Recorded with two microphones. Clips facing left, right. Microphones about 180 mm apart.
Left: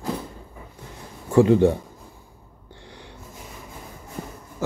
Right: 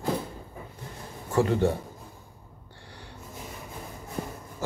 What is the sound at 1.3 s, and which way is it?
Speech, 15° left (ahead or behind).